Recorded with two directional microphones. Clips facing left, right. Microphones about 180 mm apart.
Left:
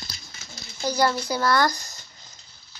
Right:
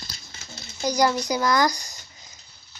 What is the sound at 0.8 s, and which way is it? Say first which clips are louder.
A child's voice: right 1 dB; 15° right (ahead or behind).